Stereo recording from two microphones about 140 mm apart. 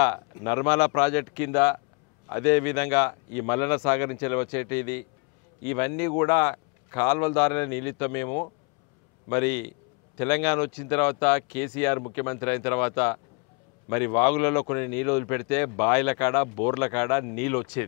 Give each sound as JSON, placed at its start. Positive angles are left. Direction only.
{"t": 0.0, "sound": "speech", "side_deg": 20}